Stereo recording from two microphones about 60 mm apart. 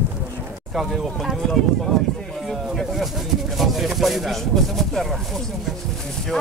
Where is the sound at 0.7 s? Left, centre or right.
Centre.